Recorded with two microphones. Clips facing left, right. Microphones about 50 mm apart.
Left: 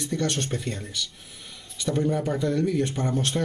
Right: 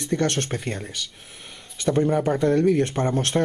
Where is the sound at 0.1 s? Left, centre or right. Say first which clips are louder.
Right 5 dB; right.